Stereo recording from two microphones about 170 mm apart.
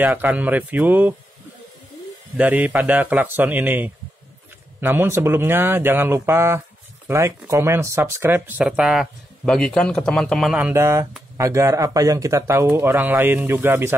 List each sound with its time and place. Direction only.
0.0 s speech: 10° right (ahead or behind)
2.3 s speech: 10° right (ahead or behind)
10.8 s speech: 15° right (ahead or behind)